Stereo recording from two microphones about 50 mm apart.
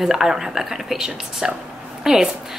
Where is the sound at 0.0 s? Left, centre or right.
Centre.